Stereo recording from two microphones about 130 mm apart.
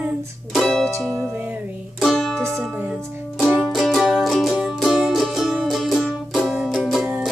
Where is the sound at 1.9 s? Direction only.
5° left (ahead or behind).